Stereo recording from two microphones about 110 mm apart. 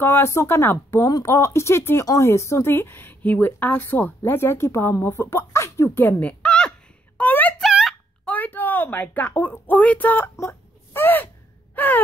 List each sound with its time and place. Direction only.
0.0 s speech: 20° left (ahead or behind)
7.2 s a sound: 15° left (ahead or behind)
7.6 s a sound: 5° right (ahead or behind)
8.3 s a woman's voice: 15° left (ahead or behind)
10.4 s wail: 20° left (ahead or behind)
11.7 s gasp: 15° left (ahead or behind)